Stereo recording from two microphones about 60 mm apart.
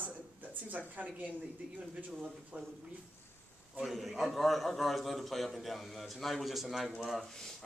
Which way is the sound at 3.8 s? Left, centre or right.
Centre.